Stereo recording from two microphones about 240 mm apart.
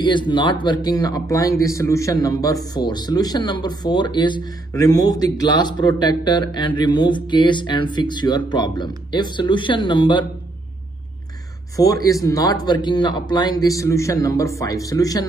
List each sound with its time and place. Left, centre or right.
0.0 s speech: centre
11.7 s speech: centre